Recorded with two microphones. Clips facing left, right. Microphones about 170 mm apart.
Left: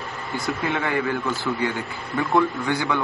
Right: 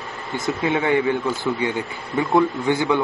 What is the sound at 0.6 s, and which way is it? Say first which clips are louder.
Speech: right 6 dB; 20° right (ahead or behind).